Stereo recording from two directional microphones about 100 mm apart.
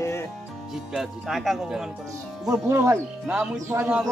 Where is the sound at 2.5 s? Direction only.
25° right (ahead or behind).